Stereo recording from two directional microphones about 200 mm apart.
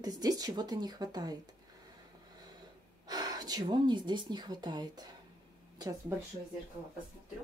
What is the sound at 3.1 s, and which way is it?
Speech, 20° right (ahead or behind).